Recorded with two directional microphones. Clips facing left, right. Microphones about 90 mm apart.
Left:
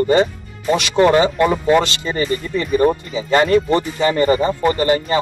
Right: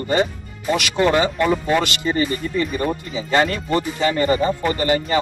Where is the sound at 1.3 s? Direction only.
15° left (ahead or behind); by 5.2 s 30° left (ahead or behind).